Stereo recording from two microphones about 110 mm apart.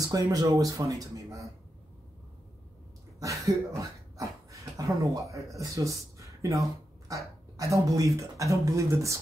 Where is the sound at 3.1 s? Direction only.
30° right (ahead or behind).